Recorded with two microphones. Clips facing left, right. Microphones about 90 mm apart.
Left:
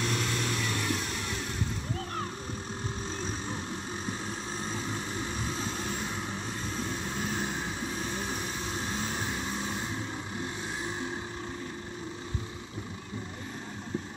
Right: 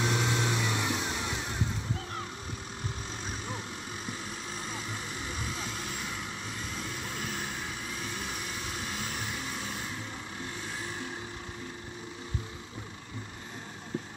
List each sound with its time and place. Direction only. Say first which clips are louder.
0.0 s vehicle: right 2 dB; 15° right (ahead or behind)
4.6 s vehicle: left 4 dB; 30° left (ahead or behind)